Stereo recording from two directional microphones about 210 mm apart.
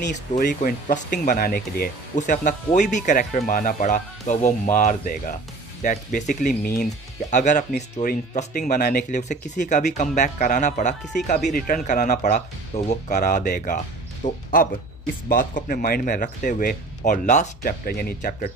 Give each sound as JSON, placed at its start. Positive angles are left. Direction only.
{"t": 0.4, "sound": "speech", "side_deg": 40}